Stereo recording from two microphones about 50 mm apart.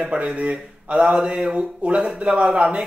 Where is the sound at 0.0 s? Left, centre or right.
Right.